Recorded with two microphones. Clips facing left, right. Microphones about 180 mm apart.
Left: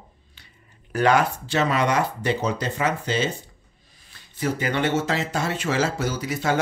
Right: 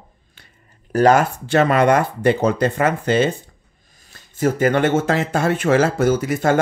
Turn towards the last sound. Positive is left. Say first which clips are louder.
# right 8 dB
turn(degrees=-50)  # may be behind; listen again after turning